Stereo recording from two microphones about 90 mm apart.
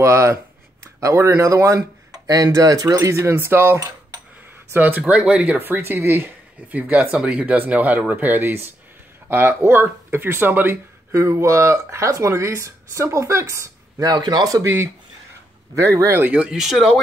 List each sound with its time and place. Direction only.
0.0 s speech: 30° right (ahead or behind)
3.2 s speech: 25° right (ahead or behind)
16.1 s speech: 20° right (ahead or behind)
16.5 s speech: 5° right (ahead or behind)